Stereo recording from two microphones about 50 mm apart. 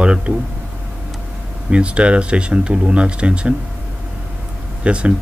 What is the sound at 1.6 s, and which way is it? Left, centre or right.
Speech, right.